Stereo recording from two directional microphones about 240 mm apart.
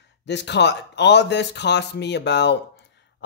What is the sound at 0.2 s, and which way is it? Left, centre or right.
A man's voice, left.